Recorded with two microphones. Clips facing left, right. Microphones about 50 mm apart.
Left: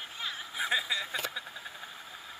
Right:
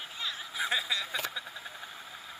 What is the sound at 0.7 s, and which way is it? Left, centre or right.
Speech, centre.